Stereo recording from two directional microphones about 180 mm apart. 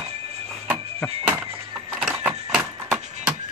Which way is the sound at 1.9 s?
10° right (ahead or behind).